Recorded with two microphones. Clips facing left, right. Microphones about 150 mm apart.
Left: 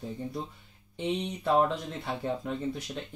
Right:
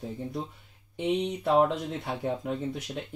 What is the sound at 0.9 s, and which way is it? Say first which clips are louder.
Speech: right 4 dB; 10° right (ahead or behind).